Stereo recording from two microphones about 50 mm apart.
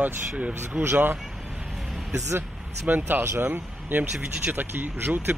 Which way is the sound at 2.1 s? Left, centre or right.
Right.